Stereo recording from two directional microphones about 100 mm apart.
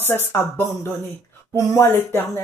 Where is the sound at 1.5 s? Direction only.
30° left (ahead or behind).